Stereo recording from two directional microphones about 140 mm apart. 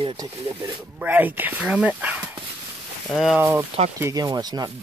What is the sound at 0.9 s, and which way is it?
Speech, 10° right (ahead or behind).